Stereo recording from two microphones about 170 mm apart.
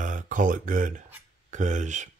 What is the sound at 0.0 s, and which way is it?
Speech, 50° right (ahead or behind).